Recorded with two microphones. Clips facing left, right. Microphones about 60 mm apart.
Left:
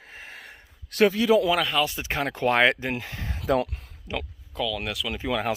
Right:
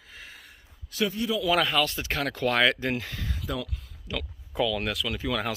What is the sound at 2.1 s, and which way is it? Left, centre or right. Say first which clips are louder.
Speech: left 3 dB; left.